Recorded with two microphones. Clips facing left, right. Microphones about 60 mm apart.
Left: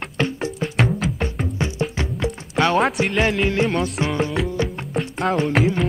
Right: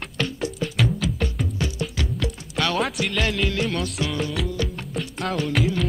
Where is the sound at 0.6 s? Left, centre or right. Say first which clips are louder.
Left 3 dB; left.